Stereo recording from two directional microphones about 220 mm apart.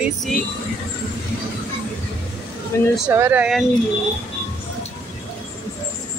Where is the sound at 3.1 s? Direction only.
10° right (ahead or behind).